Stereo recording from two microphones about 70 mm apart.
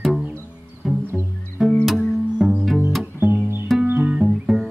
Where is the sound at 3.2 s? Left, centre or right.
Right.